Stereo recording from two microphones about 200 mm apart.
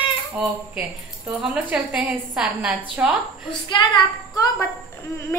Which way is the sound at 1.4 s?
5° right (ahead or behind).